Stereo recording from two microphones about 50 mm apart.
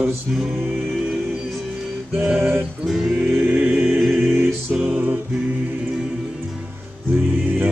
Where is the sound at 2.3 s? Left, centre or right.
Right.